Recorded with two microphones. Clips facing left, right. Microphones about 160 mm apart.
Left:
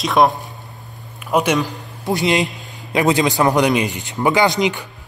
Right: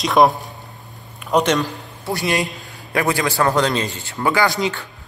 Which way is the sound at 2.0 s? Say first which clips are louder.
Left 4 dB; 20° left (ahead or behind).